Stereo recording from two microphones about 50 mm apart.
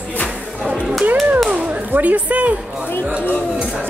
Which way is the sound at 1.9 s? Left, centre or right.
Right.